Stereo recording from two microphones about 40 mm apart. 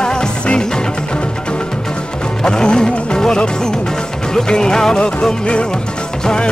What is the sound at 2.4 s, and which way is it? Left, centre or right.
Music, left.